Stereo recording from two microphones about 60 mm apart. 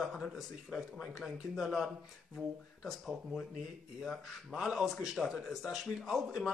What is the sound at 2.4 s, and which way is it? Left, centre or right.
Speech, right.